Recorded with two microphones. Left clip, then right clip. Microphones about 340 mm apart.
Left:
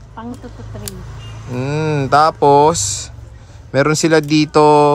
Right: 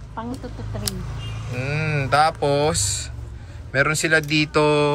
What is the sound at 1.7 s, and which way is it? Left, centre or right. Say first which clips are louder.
Speech: left 7 dB; centre.